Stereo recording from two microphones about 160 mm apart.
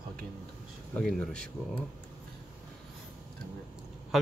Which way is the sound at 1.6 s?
10° right (ahead or behind).